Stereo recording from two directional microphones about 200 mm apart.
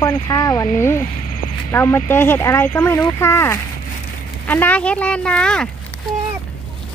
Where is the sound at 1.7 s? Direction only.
10° left (ahead or behind).